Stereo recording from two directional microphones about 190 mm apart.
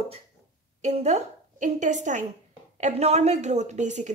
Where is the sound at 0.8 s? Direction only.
35° right (ahead or behind).